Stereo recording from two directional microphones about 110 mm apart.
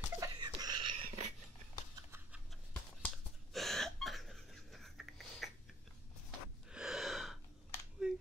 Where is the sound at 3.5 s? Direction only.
Centre (ahead or behind).